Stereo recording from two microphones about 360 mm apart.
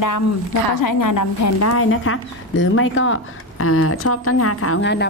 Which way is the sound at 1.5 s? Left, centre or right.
Left.